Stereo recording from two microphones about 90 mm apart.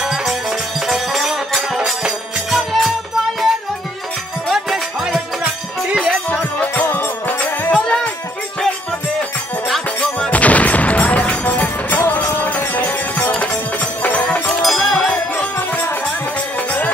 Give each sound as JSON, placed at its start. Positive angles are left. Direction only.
{"t": 0.0, "sound": "music", "side_deg": -5}
{"t": 4.5, "sound": "music", "side_deg": -5}
{"t": 6.6, "sound": "music", "side_deg": 20}
{"t": 7.7, "sound": "music", "side_deg": 10}
{"t": 9.9, "sound": "music", "side_deg": 15}
{"t": 14.5, "sound": "music", "side_deg": 0}